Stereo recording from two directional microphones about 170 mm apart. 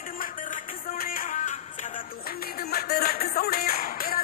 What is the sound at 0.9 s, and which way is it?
Music, 55° left (ahead or behind).